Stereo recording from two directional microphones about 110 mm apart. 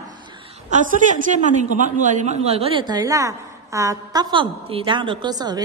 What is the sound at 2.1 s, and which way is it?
Speech, 90° right.